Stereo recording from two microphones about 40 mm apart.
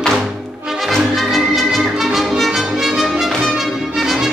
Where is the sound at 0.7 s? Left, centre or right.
Centre.